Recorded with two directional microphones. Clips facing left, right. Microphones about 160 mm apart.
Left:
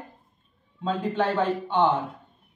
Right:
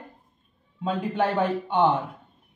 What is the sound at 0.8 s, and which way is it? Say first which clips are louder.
Speech: even; 10° right (ahead or behind).